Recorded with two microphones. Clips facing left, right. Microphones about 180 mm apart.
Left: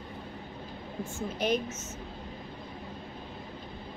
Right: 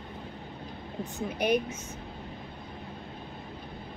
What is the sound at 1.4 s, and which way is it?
Speech, 10° right (ahead or behind).